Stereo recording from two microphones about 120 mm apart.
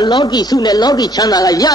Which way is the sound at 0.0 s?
35° left (ahead or behind).